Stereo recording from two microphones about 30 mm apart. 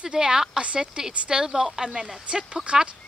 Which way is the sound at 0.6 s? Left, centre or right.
Right.